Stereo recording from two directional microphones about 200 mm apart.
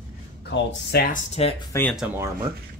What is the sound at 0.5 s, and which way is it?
Speech, 50° left (ahead or behind).